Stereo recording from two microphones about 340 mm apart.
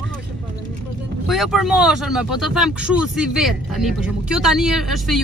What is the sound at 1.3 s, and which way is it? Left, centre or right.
Speech, centre.